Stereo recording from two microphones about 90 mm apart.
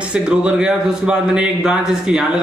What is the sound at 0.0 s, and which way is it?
A man's voice, 10° right (ahead or behind).